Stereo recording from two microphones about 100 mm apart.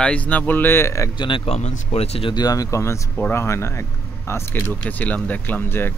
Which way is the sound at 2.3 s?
40° left (ahead or behind).